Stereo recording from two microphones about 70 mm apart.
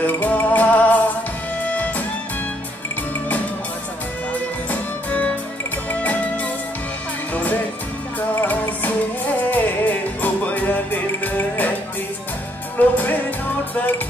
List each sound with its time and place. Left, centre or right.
0.0 s music: left
4.6 s music: left
8.4 s music: left
12.7 s music: left